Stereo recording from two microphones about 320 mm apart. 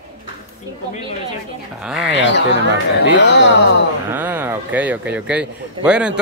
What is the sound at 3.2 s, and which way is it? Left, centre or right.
Speech, left.